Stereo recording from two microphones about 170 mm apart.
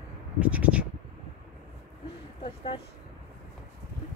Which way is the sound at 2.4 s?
30° left (ahead or behind).